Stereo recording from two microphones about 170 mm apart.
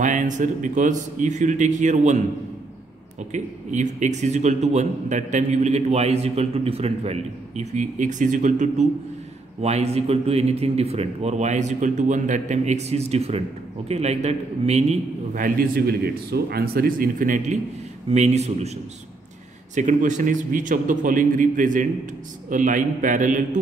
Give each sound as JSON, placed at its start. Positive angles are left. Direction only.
{"t": 0.0, "sound": "a man's voice", "side_deg": -45}
{"t": 3.3, "sound": "a man's voice", "side_deg": -45}
{"t": 18.1, "sound": "a man's voice", "side_deg": -40}
{"t": 19.7, "sound": "a man's voice", "side_deg": -45}